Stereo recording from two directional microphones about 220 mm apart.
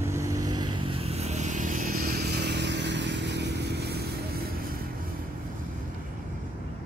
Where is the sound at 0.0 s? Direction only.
15° right (ahead or behind); by 4.6 s 45° right (ahead or behind).